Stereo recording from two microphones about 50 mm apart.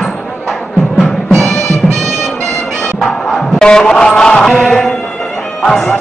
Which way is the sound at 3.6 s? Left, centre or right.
Centre.